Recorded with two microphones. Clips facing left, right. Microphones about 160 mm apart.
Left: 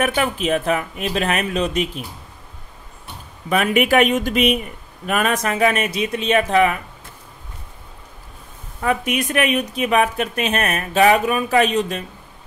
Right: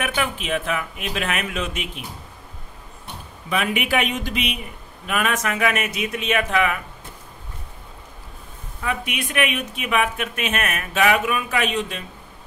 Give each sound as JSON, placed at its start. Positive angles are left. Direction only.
{"t": 0.0, "sound": "a woman's voice", "side_deg": 40}
{"t": 3.4, "sound": "a woman's voice", "side_deg": 45}
{"t": 8.8, "sound": "a woman's voice", "side_deg": 45}